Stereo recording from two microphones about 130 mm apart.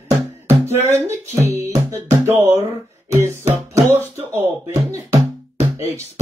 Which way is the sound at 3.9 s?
20° right (ahead or behind).